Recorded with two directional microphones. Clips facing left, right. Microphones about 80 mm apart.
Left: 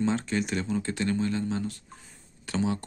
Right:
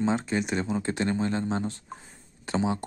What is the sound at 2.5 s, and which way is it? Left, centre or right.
Speech, right.